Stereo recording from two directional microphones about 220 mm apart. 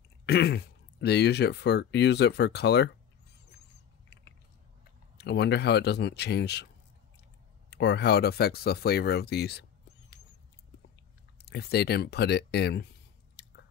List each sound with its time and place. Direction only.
0.3 s speech: 50° left (ahead or behind)
5.1 s speech: 50° left (ahead or behind)
7.7 s speech: 50° left (ahead or behind)
11.4 s speech: 45° left (ahead or behind)
13.4 s chewing: 50° left (ahead or behind)